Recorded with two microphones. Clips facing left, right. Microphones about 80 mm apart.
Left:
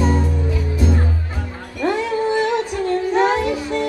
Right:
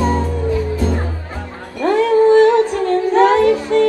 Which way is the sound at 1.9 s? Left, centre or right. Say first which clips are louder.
Right 10 dB; centre.